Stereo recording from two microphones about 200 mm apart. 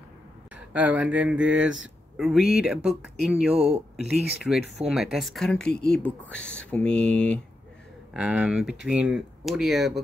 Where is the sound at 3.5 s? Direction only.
30° right (ahead or behind).